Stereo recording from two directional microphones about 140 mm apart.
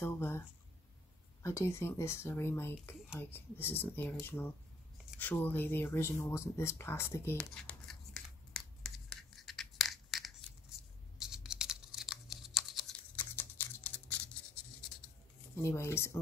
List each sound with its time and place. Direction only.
0.0 s speech: 15° left (ahead or behind)
7.3 s tearing: 5° left (ahead or behind)
13.1 s a sound: 15° left (ahead or behind)
15.5 s speech: 20° left (ahead or behind)